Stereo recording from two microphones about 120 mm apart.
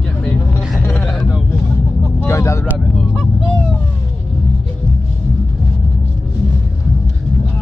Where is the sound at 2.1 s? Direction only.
25° left (ahead or behind).